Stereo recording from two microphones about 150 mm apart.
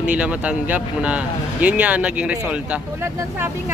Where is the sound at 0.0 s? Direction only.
10° right (ahead or behind).